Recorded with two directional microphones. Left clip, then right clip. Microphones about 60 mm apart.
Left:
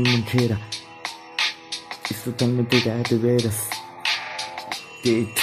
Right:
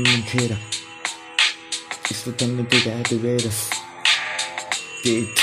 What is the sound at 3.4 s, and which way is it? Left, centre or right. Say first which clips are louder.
Music: right 2 dB; centre.